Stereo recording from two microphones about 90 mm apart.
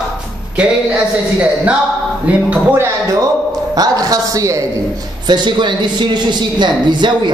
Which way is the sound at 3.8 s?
45° right (ahead or behind).